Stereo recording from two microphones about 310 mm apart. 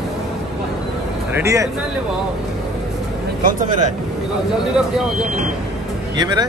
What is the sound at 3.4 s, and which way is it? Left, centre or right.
Speech, right.